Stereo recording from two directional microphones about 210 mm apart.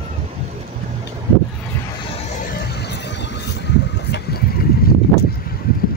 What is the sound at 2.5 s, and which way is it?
Vehicle, 50° left (ahead or behind).